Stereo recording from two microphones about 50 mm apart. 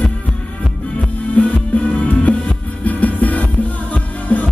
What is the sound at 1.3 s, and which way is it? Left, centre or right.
Music, left.